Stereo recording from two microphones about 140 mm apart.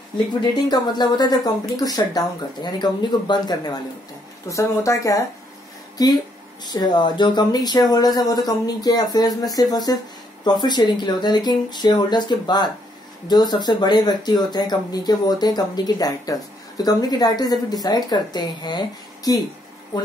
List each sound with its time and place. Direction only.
0.3 s speech: 30° left (ahead or behind)
6.6 s speech: 30° left (ahead or behind)